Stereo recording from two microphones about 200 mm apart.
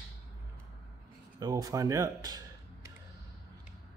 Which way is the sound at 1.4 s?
20° right (ahead or behind).